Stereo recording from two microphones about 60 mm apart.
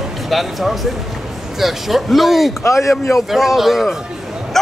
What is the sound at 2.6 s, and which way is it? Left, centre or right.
Speech, left.